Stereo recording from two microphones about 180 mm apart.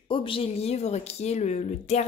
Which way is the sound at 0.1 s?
30° left (ahead or behind).